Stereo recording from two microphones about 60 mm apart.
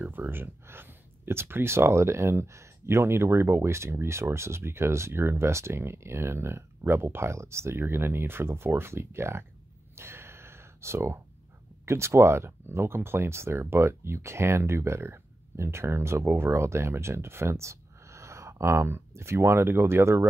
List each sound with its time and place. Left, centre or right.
0.0 s speech: right
9.9 s a sound: right
11.8 s speech: right